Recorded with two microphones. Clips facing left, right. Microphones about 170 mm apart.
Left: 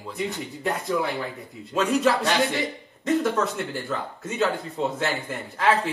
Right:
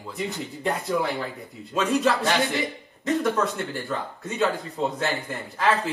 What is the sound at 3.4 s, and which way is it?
Speech, centre (ahead or behind).